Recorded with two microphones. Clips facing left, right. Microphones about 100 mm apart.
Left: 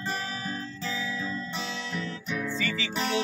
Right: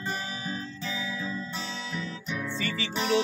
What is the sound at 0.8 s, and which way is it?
Music, 10° right (ahead or behind).